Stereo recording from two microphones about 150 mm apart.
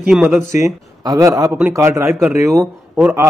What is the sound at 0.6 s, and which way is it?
A man's voice, 20° right (ahead or behind).